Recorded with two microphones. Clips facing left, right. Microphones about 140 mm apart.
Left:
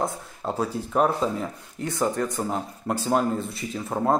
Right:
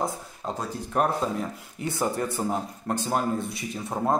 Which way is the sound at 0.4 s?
5° left (ahead or behind).